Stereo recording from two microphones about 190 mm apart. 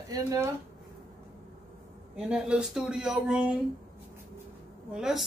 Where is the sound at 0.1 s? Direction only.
15° right (ahead or behind).